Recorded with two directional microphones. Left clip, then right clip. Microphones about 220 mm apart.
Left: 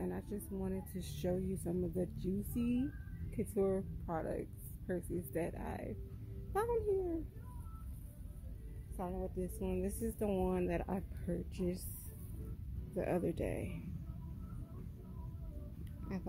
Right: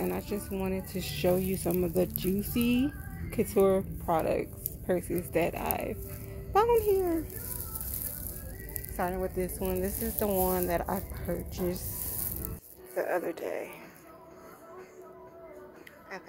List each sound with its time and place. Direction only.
0.0 s a woman's voice: 10° left (ahead or behind)
6.5 s a sound: 10° left (ahead or behind)
8.9 s a woman's voice: 15° left (ahead or behind)
9.6 s speech: 30° left (ahead or behind)
12.9 s a woman's voice: 15° left (ahead or behind)